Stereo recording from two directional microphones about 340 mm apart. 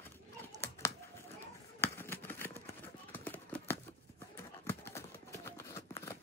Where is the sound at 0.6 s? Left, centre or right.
Centre.